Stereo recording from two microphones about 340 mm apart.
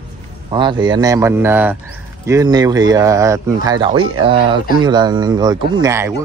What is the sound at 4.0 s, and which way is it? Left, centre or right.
Speech, right.